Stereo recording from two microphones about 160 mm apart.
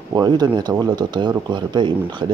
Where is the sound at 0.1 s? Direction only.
25° right (ahead or behind).